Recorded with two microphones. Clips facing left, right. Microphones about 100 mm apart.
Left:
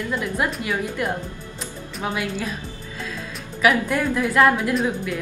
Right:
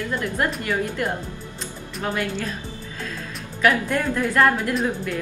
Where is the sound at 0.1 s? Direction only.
5° left (ahead or behind).